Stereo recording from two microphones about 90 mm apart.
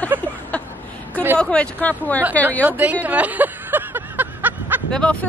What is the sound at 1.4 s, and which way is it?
Speech, 10° left (ahead or behind).